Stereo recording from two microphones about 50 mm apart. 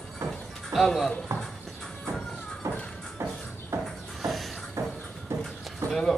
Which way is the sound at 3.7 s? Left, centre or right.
Right.